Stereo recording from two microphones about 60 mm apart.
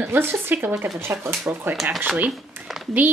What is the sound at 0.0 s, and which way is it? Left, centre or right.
Speech, right.